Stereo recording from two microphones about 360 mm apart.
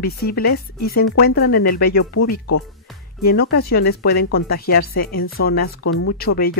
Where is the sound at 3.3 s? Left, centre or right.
Left.